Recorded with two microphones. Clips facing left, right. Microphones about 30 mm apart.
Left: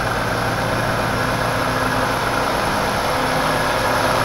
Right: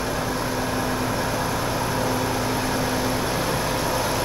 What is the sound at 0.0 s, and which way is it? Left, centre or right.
Vehicle, left.